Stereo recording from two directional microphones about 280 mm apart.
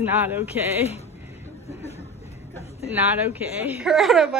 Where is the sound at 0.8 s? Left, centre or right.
Left.